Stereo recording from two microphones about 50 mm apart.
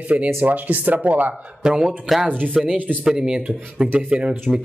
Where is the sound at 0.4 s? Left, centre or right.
Right.